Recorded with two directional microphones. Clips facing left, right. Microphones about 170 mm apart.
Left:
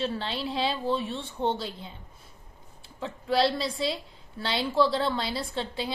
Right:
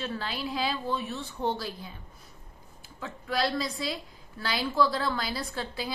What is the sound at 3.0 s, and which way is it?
A woman's voice, 30° left (ahead or behind).